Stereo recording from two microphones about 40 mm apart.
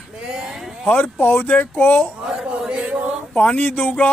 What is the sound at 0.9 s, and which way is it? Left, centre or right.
Speech, left.